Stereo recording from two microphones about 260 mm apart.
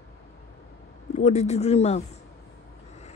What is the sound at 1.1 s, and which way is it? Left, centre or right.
Speech, left.